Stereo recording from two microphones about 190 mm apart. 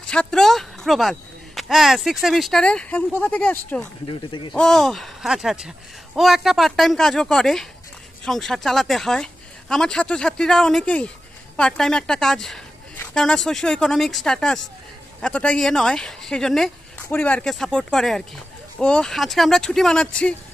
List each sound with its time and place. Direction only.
0.1 s speech: 5° left (ahead or behind)
4.0 s speech: 25° left (ahead or behind)
4.6 s speech: centre (ahead or behind)